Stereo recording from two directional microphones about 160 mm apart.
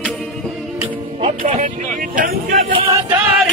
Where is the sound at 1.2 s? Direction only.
50° right (ahead or behind).